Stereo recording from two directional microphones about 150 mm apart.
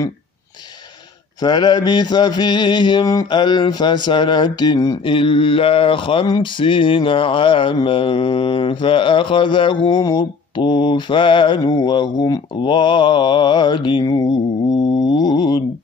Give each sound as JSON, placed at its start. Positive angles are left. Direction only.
{"t": 1.4, "sound": "mantra", "side_deg": 30}